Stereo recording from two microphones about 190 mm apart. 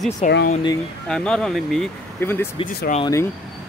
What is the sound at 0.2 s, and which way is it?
Speech, 35° left (ahead or behind).